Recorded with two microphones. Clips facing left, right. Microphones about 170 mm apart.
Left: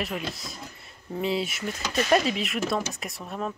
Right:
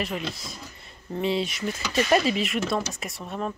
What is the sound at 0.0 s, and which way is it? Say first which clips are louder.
Speech: right 1 dB; centre (ahead or behind).